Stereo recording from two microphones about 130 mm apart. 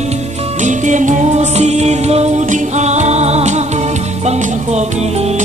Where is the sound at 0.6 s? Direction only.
70° right (ahead or behind).